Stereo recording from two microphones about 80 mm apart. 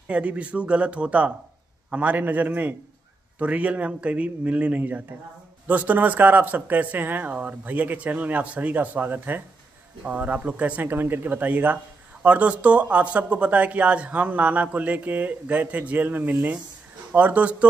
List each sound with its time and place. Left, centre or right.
0.1 s speech: centre